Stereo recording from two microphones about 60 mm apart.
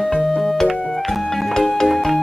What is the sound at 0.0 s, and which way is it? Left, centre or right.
Music, centre.